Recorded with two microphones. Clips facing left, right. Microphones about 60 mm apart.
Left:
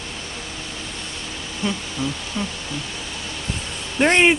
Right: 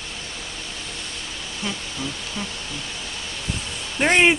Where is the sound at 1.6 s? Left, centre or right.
Centre.